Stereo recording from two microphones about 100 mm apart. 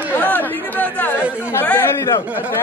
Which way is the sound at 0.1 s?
20° left (ahead or behind).